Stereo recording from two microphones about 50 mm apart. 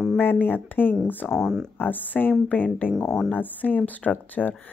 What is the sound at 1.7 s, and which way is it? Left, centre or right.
Speech, left.